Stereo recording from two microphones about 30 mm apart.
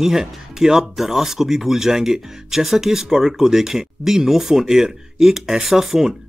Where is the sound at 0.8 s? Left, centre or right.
Centre.